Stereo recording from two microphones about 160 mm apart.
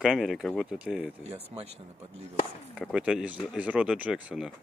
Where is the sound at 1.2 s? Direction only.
40° right (ahead or behind).